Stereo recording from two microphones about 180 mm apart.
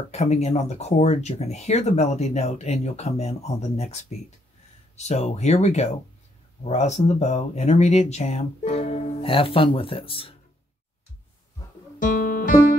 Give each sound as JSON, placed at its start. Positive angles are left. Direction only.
{"t": 0.1, "sound": "speech", "side_deg": 35}
{"t": 12.0, "sound": "guitar", "side_deg": 50}